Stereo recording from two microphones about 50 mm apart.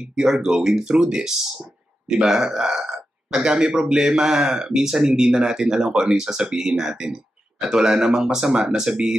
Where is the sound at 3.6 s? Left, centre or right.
Centre.